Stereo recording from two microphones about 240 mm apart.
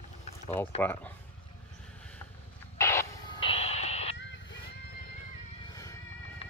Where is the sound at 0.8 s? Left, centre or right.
Centre.